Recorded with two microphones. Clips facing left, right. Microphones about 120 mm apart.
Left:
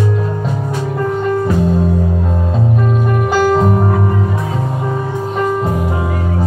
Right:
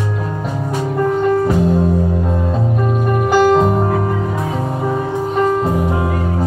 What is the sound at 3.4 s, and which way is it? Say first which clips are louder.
Music: even; 15° right (ahead or behind).